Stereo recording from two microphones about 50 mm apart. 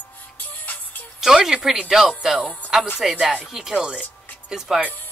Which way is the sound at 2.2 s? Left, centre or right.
Centre.